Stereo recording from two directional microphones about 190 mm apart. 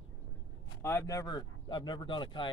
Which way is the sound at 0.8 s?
15° left (ahead or behind).